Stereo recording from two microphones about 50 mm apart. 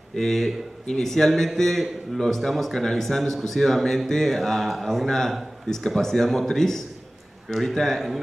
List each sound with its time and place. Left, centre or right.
0.1 s a man's voice: centre